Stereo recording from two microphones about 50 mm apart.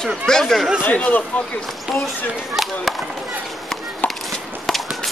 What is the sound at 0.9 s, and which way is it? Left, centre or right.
Speech, left.